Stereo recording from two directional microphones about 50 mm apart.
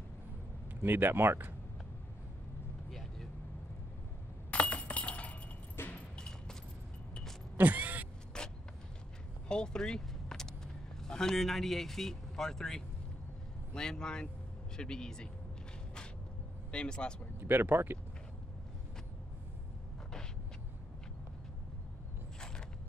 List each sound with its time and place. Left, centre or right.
0.8 s speech: right
2.9 s vehicle: centre
4.5 s glass: left
5.8 s a sound: left
6.1 s a sound: centre
7.5 s creak: right
8.3 s vehicle: centre
9.5 s speech: centre
16.7 s speech: centre
17.4 s speech: right